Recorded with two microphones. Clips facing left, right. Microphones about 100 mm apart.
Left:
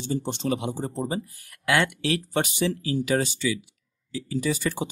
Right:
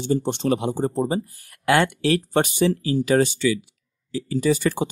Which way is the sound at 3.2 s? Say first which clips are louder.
Right 7 dB; 65° right (ahead or behind).